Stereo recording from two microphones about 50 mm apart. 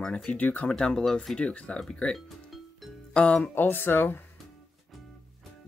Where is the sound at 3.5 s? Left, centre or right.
Left.